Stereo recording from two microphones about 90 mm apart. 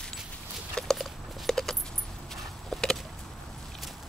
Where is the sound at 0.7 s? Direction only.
5° left (ahead or behind).